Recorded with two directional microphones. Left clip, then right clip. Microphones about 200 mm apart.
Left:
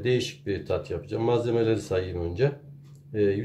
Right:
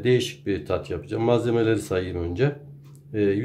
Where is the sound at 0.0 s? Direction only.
15° right (ahead or behind).